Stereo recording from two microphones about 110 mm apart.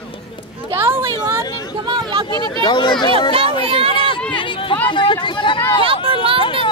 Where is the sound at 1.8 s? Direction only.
45° right (ahead or behind).